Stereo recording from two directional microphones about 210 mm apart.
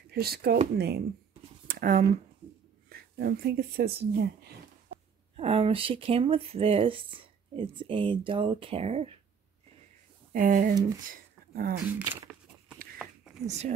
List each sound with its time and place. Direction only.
0.1 s speech: 50° right (ahead or behind)
1.7 s a sound: 40° right (ahead or behind)
2.9 s speech: 50° right (ahead or behind)
5.3 s speech: 30° right (ahead or behind)
10.3 s speech: 40° right (ahead or behind)
12.0 s a sound: 10° right (ahead or behind)
13.5 s speech: 35° right (ahead or behind)